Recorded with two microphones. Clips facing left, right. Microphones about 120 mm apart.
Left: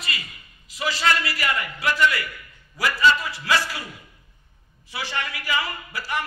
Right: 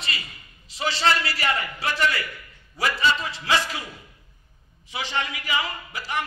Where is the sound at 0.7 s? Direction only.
30° right (ahead or behind).